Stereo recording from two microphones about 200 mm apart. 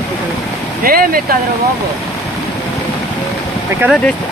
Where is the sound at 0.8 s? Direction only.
45° right (ahead or behind).